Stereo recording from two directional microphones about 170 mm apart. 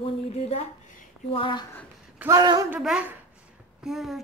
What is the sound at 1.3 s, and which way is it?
Speech, 30° left (ahead or behind).